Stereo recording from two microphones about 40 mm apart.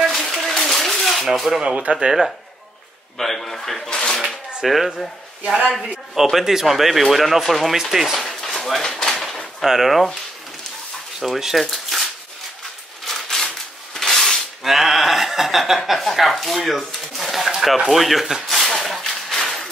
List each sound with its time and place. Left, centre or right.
0.0 s a sound: centre
1.2 s speech: centre
3.2 s a man's voice: centre
3.9 s speech: left
4.6 s speech: centre
6.1 s speech: centre
8.9 s a sound: centre
9.6 s speech: centre
11.1 s speech: centre
11.6 s shuffling cards: centre
13.0 s a sound: centre
15.8 s speech: centre
18.5 s a sound: centre